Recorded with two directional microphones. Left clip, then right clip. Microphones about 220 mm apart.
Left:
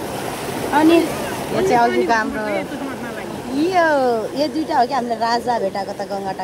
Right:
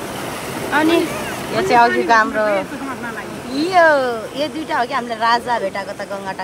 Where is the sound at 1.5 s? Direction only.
5° right (ahead or behind).